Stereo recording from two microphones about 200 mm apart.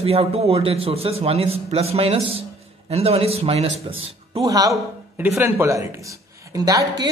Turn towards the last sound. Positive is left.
turn(degrees=-20)  # may be behind; listen again after turning